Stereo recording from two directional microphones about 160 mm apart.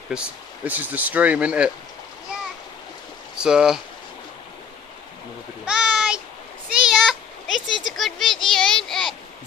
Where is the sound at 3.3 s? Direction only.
5° right (ahead or behind).